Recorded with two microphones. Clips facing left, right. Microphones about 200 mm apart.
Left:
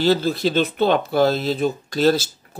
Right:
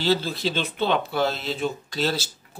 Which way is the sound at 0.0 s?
45° left (ahead or behind).